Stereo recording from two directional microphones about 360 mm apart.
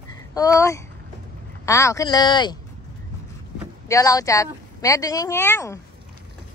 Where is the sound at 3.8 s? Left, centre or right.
Centre.